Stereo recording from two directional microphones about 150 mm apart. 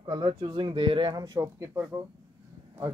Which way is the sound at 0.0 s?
30° right (ahead or behind).